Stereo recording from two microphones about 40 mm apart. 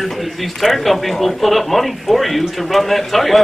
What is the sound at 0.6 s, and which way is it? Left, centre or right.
A man's voice, centre.